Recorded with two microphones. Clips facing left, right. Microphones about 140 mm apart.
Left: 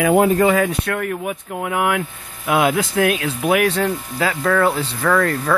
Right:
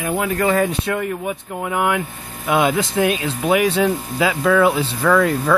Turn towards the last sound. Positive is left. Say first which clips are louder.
# right 2 dB
turn(degrees=-5)  # may be behind; listen again after turning